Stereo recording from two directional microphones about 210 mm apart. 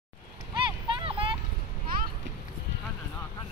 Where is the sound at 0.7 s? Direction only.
25° right (ahead or behind).